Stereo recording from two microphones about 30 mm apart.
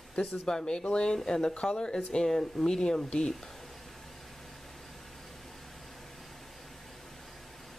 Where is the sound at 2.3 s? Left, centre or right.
Centre.